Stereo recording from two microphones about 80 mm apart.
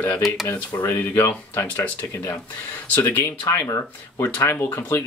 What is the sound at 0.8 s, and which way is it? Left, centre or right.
Speech, left.